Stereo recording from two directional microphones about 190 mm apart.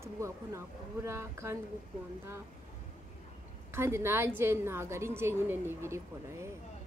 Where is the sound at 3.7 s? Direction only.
15° right (ahead or behind).